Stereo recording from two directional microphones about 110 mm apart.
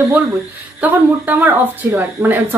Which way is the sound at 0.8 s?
15° right (ahead or behind).